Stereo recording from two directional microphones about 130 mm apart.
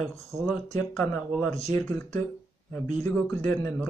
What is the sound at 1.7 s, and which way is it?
A man's voice, 10° left (ahead or behind).